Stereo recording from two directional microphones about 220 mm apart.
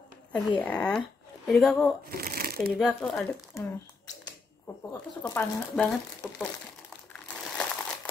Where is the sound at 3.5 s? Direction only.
10° left (ahead or behind).